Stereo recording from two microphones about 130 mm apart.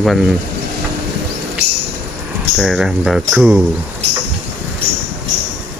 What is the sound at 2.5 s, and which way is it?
Speech, 5° right (ahead or behind).